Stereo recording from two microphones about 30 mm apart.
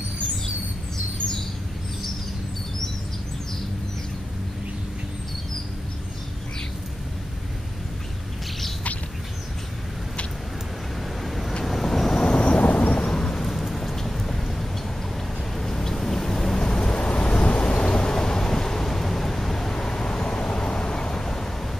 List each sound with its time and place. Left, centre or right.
11.0 s vehicle: centre
12.2 s vehicle: left
12.4 s thunder: left
13.1 s thunder: centre
13.4 s rain: centre
15.5 s vehicle: centre
16.8 s vehicle: left
18.1 s vehicle: centre